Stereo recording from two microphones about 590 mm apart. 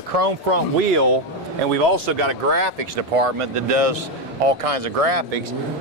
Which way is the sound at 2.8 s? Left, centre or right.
Right.